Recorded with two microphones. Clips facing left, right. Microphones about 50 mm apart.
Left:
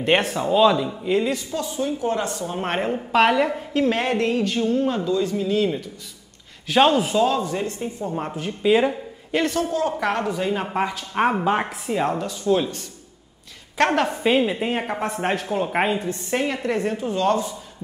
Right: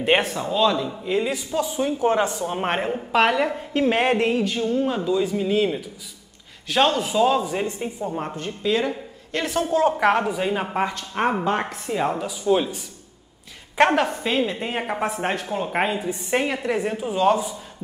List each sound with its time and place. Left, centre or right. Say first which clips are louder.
0.0 s a woman's voice: left 1 dB; centre
1.5 s speech: right 3 dB; centre
1.8 s speech: right 3 dB; right
2.2 s speech: right 2 dB; centre
2.7 s a woman's voice: left 3 dB; centre
3.8 s speech: right 2 dB; centre
6.7 s a woman's voice: left 3 dB; centre
8.0 s a woman's voice: left 1 dB; centre
8.6 s a sound: left 5 dB; centre
9.6 s speech: right 3 dB; right; by 12.8 s centre
13.9 s a woman's voice: left 2 dB; centre
16.1 s speech: right 1 dB; centre